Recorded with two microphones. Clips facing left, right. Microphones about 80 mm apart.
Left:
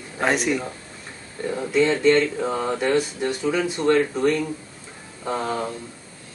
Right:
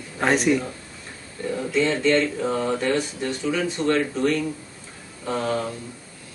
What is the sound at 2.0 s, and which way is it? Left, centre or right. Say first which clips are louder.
Speech: left 2 dB; centre.